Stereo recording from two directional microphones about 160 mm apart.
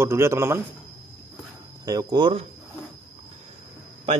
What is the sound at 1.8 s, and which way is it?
Speech, 25° right (ahead or behind).